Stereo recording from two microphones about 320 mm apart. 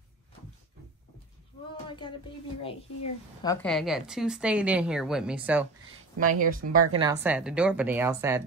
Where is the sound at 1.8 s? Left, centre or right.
Centre.